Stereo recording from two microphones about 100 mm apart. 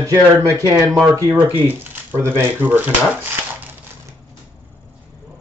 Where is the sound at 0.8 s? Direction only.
5° right (ahead or behind).